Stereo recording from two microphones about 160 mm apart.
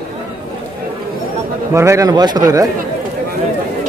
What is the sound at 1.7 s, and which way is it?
Speech, 20° right (ahead or behind).